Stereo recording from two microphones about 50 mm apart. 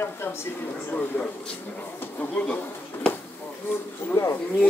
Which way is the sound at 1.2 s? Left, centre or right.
Left.